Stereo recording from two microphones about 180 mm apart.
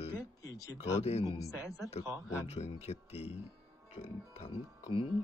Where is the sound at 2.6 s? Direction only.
35° left (ahead or behind).